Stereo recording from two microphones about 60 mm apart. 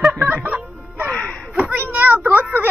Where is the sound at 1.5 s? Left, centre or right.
Right.